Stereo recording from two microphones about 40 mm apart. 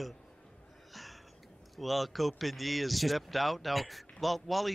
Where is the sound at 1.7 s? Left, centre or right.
Centre.